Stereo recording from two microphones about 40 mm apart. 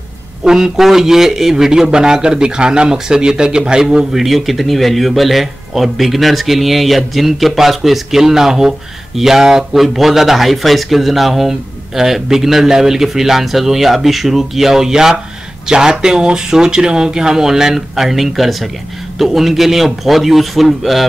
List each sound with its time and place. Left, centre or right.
0.4 s a man's voice: centre